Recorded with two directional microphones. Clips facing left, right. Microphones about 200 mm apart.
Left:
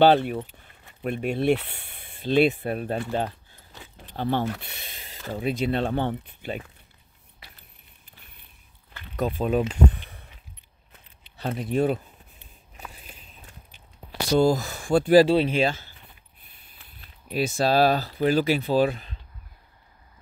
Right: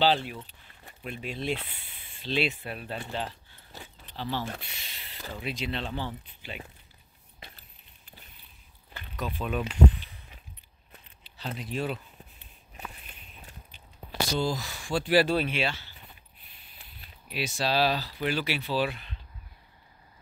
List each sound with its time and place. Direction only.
0.0 s speech: 55° left (ahead or behind)
9.4 s speech: 30° left (ahead or behind)
9.9 s a sound: 60° left (ahead or behind)
11.3 s speech: 55° left (ahead or behind)
14.3 s speech: 50° left (ahead or behind)
15.2 s speech: 25° left (ahead or behind)
15.5 s speech: 45° left (ahead or behind)
17.3 s speech: 45° left (ahead or behind)